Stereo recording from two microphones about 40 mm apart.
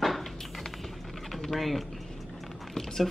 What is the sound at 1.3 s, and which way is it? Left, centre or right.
Typing, centre.